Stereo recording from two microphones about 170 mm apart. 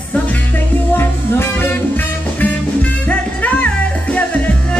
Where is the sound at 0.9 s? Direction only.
15° left (ahead or behind).